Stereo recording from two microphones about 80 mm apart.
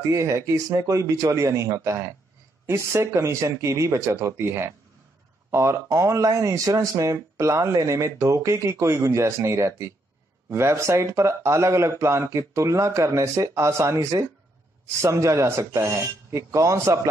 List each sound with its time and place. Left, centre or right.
0.1 s speech: right